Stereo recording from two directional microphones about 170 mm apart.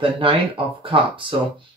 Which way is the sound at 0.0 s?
30° right (ahead or behind).